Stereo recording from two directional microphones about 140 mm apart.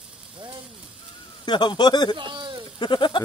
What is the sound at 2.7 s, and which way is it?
Speech, 35° left (ahead or behind).